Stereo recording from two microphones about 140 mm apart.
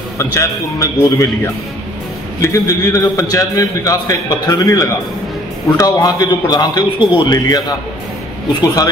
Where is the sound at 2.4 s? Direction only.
25° left (ahead or behind).